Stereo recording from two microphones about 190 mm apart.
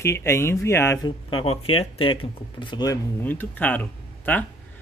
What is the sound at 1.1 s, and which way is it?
Speech, 25° left (ahead or behind).